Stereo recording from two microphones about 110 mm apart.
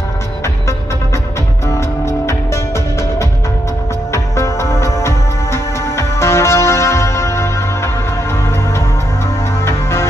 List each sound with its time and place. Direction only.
1.7 s music: 25° left (ahead or behind)
4.1 s music: 25° left (ahead or behind)
9.7 s music: 25° left (ahead or behind)